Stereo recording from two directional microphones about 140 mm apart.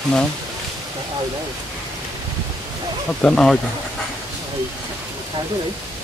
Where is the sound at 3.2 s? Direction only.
5° left (ahead or behind).